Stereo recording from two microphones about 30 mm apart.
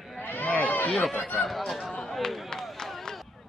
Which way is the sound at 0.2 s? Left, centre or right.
Left.